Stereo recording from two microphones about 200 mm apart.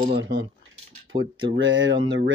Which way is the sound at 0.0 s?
55° right (ahead or behind).